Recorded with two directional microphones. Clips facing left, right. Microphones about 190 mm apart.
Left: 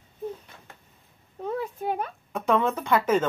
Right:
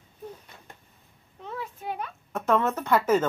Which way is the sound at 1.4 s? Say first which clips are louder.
Left 7 dB; 45° left (ahead or behind).